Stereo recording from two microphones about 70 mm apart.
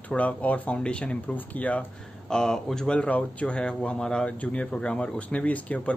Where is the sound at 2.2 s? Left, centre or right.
Centre.